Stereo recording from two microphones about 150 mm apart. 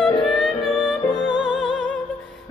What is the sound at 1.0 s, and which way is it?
Music, 25° left (ahead or behind).